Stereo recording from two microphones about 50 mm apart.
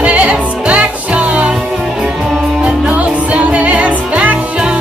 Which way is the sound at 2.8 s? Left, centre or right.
Right.